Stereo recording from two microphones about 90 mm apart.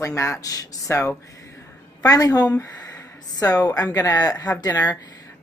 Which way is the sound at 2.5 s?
35° left (ahead or behind).